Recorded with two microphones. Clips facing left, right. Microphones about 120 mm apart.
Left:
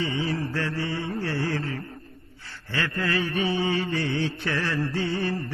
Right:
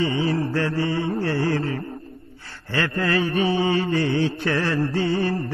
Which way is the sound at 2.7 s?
45° right (ahead or behind).